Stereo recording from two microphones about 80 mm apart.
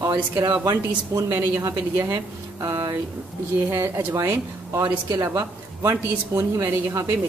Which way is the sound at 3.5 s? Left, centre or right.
Right.